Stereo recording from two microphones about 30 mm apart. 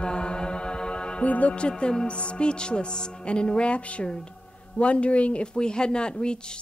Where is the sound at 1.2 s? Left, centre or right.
Left.